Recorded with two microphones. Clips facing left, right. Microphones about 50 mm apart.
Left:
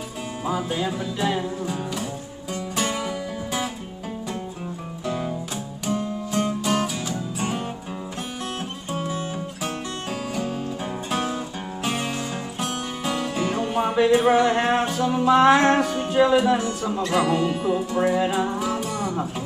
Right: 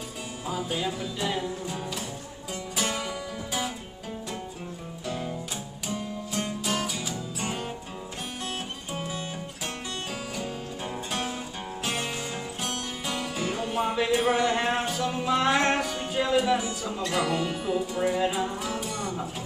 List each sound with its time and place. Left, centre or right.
0.5 s music: centre
0.7 s music: left
1.3 s music: centre
5.9 s music: centre
8.9 s music: centre
10.3 s music: centre